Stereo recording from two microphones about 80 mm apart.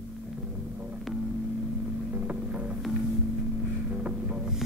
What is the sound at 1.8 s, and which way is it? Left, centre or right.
Boat, centre.